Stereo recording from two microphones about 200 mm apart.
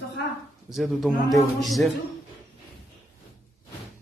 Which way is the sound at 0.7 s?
Centre (ahead or behind).